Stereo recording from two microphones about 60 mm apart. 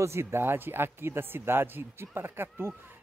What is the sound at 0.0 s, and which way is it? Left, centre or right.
A man's voice, right.